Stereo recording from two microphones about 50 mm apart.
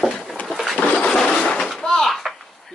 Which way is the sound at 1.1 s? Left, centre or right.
Centre.